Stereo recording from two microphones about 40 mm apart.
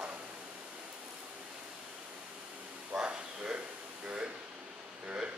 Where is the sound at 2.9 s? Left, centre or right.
Right.